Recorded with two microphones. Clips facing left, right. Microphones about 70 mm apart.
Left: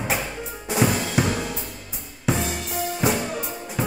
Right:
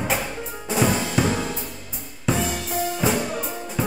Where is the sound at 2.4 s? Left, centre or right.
Right.